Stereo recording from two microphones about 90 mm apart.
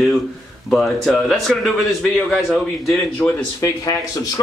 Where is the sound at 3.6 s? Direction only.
40° left (ahead or behind).